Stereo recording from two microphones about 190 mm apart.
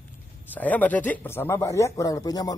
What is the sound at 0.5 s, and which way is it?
Speech, 10° left (ahead or behind).